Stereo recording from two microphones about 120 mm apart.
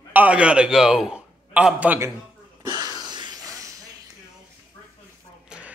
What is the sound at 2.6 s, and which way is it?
Wheeze, 35° right (ahead or behind).